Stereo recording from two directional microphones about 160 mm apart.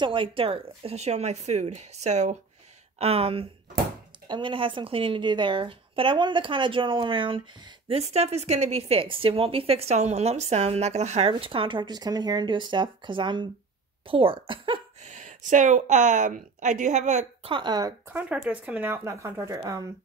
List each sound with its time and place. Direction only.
0.0 s a woman's voice: 30° right (ahead or behind)
15.0 s speech: 50° right (ahead or behind)
17.5 s speech: 30° right (ahead or behind)
18.0 s speech: 10° right (ahead or behind)